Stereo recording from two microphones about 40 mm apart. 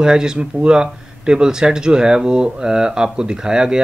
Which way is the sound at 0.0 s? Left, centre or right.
Centre.